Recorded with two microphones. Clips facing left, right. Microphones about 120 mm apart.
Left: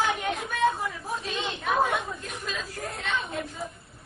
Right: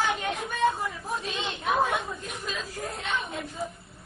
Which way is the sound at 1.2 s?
25° right (ahead or behind).